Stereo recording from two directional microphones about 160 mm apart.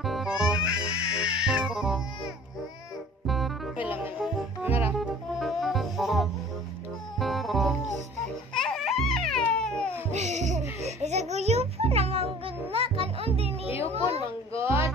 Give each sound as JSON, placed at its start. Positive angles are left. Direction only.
{"t": 0.0, "sound": "music", "side_deg": 0}
{"t": 3.3, "sound": "music", "side_deg": 0}
{"t": 3.7, "sound": "music", "side_deg": -10}
{"t": 5.4, "sound": "music", "side_deg": 0}
{"t": 10.1, "sound": "a sound", "side_deg": -45}
{"t": 10.8, "sound": "music", "side_deg": -45}
{"t": 14.5, "sound": "a sound", "side_deg": -15}